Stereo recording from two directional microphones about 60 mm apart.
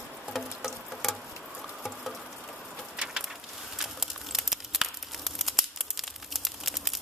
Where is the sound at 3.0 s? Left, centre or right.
Centre.